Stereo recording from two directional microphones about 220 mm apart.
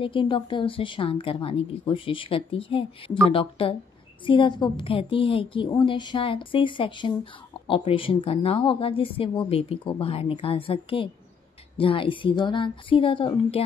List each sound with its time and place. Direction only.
0.0 s a woman's voice: 25° left (ahead or behind)